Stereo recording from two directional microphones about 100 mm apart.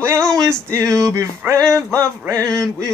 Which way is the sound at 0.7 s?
30° right (ahead or behind).